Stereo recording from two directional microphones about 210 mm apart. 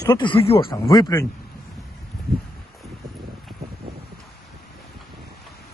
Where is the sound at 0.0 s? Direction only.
20° left (ahead or behind).